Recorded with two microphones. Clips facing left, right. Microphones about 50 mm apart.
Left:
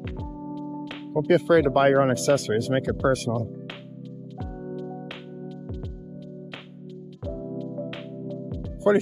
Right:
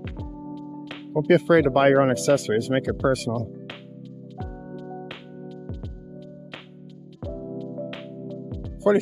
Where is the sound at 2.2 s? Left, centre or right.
Left.